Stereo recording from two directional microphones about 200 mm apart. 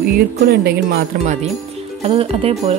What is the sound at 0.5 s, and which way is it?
Speech, 55° right (ahead or behind).